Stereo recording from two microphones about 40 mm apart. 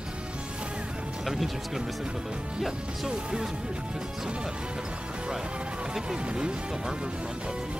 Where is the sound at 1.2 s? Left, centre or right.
Centre.